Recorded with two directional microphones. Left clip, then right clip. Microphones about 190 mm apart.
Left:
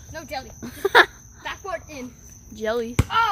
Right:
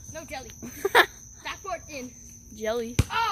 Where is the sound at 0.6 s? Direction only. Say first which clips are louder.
Left 5 dB; centre (ahead or behind).